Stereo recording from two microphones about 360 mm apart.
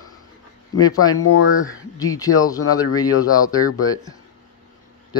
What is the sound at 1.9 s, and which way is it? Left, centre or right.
Speech, centre.